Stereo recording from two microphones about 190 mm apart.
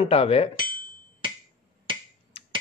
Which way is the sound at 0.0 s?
30° left (ahead or behind).